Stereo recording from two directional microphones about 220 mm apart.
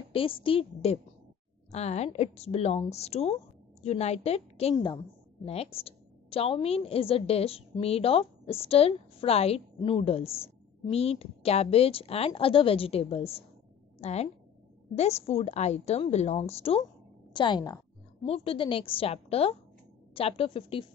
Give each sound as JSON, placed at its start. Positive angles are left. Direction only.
{"t": 0.1, "sound": "a woman's voice", "side_deg": 25}
{"t": 4.7, "sound": "a woman's voice", "side_deg": 15}
{"t": 5.4, "sound": "a woman's voice", "side_deg": 25}